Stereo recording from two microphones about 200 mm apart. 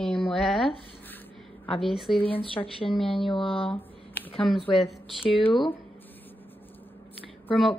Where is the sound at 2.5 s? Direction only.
25° left (ahead or behind).